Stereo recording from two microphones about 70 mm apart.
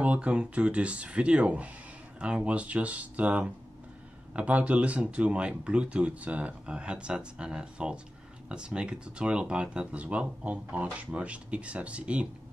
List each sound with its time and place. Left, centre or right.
0.0 s speech: centre